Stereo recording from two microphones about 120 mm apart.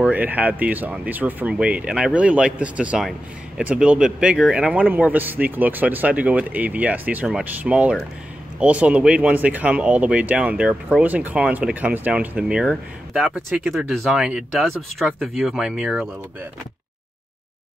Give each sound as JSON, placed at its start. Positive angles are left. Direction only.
{"t": 0.0, "sound": "speech", "side_deg": -15}